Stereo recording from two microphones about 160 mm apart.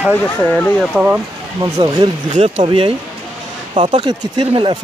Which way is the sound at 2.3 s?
45° right (ahead or behind).